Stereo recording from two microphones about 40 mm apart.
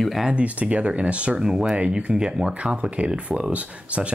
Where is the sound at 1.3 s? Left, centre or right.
Centre.